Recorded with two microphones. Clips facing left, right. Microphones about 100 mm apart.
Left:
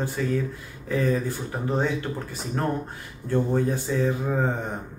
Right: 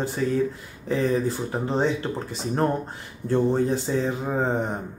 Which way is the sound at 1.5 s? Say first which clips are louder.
Right 2 dB; 25° right (ahead or behind).